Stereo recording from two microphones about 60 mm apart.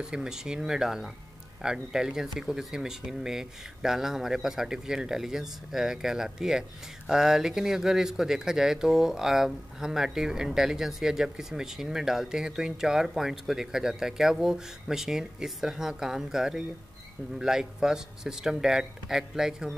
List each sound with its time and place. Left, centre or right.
0.0 s speech: centre